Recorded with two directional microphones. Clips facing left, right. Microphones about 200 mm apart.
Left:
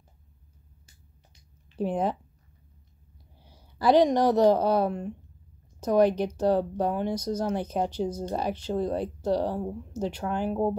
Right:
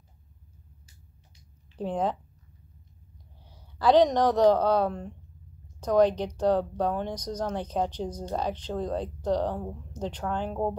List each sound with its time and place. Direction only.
1.8 s speech: 10° left (ahead or behind)
3.3 s speech: 10° left (ahead or behind)